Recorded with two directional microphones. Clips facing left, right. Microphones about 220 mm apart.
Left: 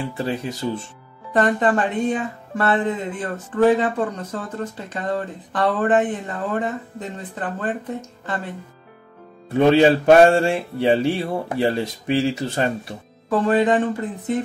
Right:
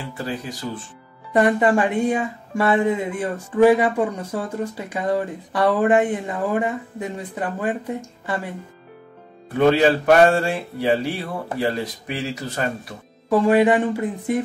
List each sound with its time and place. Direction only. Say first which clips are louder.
0.2 s music: left 2 dB; 25° left (ahead or behind)
1.3 s speech: right 2 dB; 10° right (ahead or behind)
9.5 s music: left 2 dB; 25° left (ahead or behind)
13.3 s speech: right 2 dB; 10° right (ahead or behind)